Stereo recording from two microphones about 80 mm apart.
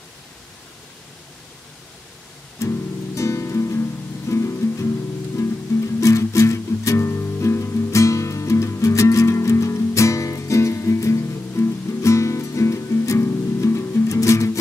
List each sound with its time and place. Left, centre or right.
2.6 s music: left